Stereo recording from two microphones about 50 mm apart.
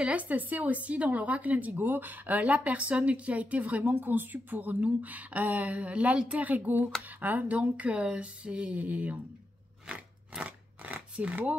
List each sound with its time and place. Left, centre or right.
0.0 s speech: right
3.8 s speech: right
9.8 s biting: centre
10.9 s zipper: right